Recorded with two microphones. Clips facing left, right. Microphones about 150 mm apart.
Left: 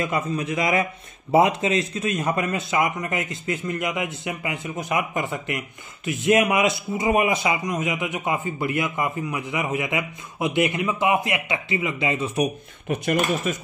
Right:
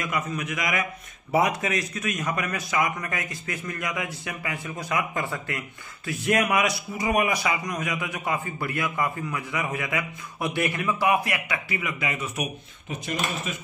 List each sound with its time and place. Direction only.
0.0 s a man's voice: 30° left (ahead or behind)
12.8 s speech: 60° left (ahead or behind)